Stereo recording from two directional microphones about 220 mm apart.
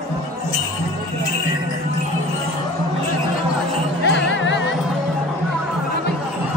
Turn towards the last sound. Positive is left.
turn(degrees=55)  # may be behind; listen again after turning